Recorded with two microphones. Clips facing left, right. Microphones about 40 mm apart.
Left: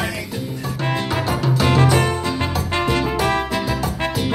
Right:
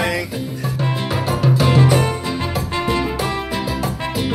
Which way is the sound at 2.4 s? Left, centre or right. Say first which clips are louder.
Left 1 dB; left.